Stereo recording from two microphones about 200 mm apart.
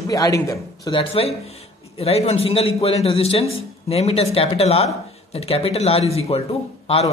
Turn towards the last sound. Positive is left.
turn(degrees=30)  # may be behind; listen again after turning